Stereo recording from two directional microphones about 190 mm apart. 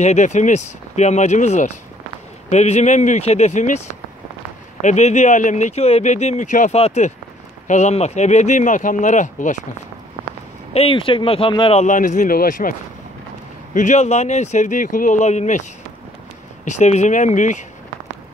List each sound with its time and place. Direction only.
0.0 s speech: 40° left (ahead or behind)
4.8 s speech: 35° left (ahead or behind)
10.7 s speech: 30° left (ahead or behind); by 12.7 s 45° left (ahead or behind)
13.7 s speech: 40° left (ahead or behind)
16.6 s speech: 40° left (ahead or behind)